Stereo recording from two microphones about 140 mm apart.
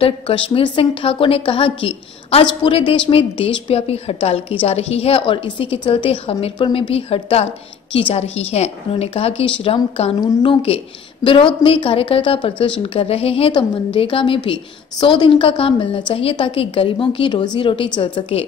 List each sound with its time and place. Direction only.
0.0 s a woman's voice: 40° left (ahead or behind)